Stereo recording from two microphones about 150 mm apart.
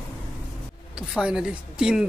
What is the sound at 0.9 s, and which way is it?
Speech, 5° right (ahead or behind).